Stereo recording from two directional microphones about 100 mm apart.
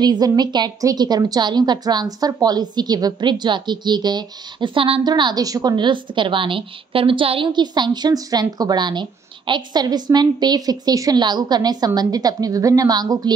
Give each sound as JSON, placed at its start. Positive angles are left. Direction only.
{"t": 0.0, "sound": "a woman's voice", "side_deg": -45}
{"t": 5.0, "sound": "a woman's voice", "side_deg": -45}